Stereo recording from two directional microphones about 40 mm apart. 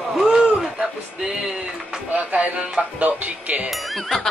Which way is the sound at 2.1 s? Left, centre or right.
Right.